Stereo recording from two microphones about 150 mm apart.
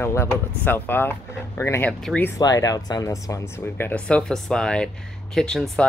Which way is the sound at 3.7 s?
10° left (ahead or behind).